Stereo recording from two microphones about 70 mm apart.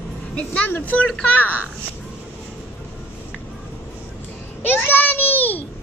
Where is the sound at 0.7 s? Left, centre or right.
Left.